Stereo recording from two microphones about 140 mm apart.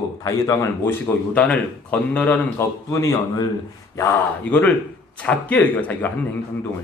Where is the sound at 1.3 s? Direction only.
10° left (ahead or behind).